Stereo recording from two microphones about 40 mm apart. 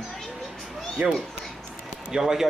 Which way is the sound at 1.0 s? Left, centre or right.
Right.